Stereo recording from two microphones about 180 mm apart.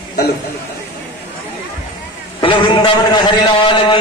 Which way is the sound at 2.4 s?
30° left (ahead or behind).